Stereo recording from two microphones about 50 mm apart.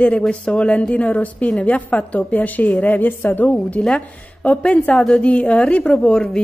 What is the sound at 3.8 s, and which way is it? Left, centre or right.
A woman's voice, left.